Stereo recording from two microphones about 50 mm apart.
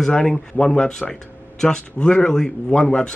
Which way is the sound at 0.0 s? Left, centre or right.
Centre.